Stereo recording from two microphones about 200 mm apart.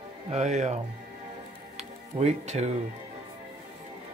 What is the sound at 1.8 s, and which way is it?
Music, 35° right (ahead or behind).